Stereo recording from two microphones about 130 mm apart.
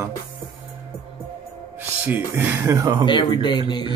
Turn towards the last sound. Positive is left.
turn(degrees=35)  # may be behind; listen again after turning